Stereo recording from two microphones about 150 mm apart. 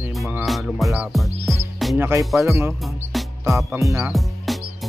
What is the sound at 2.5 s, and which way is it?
Speech, 15° right (ahead or behind).